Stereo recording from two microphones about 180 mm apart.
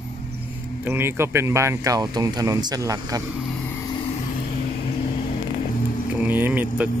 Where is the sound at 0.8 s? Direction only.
10° right (ahead or behind).